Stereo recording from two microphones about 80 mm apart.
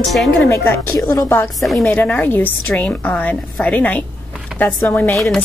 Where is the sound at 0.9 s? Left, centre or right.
Left.